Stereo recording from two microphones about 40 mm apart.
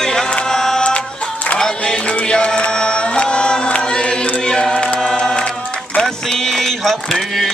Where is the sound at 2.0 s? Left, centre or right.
Left.